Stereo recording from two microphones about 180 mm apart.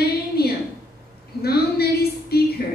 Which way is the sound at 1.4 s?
60° left (ahead or behind).